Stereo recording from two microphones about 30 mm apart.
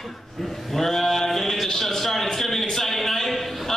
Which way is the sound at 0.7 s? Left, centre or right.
Centre.